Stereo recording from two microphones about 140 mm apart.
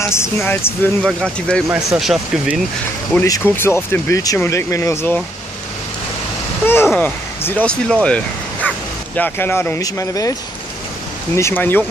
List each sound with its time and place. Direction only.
0.0 s speech: 20° left (ahead or behind)
1.0 s speech: 5° left (ahead or behind)
3.1 s speech: 10° left (ahead or behind)
6.6 s speech: 15° left (ahead or behind)
8.6 s bow-wow: 10° left (ahead or behind)
9.8 s speech: 25° left (ahead or behind)
11.3 s speech: 15° left (ahead or behind)